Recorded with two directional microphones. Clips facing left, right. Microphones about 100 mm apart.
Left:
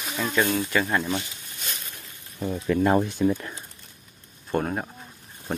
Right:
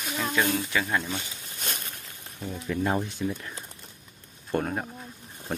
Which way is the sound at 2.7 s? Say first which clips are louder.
Left 6 dB; 80° left.